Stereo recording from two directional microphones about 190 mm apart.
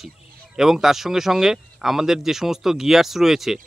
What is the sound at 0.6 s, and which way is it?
Speech, centre (ahead or behind).